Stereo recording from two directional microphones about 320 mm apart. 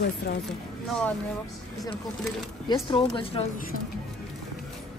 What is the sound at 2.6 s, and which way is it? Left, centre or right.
Speech, centre.